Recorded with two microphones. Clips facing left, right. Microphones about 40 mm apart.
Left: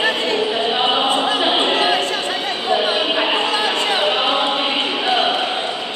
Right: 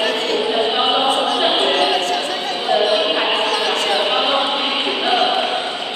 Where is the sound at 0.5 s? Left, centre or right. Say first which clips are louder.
Right 1 dB; centre.